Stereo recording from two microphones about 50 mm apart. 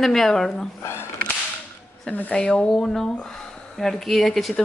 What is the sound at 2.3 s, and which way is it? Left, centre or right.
Speech, centre.